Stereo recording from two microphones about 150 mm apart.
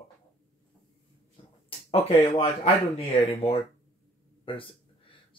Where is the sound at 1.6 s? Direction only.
40° left (ahead or behind).